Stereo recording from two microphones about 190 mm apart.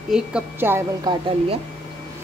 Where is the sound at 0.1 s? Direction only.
10° right (ahead or behind).